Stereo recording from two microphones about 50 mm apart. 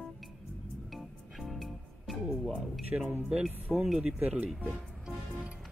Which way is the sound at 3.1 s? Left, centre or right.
Right.